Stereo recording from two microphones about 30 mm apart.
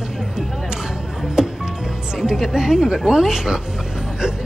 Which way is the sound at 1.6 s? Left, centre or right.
Right.